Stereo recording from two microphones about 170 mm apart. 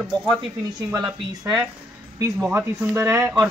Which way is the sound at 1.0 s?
10° right (ahead or behind).